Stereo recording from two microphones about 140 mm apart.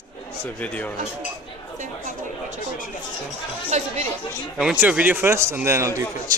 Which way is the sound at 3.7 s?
55° right (ahead or behind).